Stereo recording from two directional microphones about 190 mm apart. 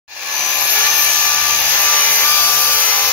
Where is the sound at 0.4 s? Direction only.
5° left (ahead or behind).